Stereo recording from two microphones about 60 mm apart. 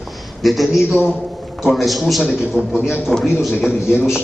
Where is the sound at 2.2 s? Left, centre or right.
Centre.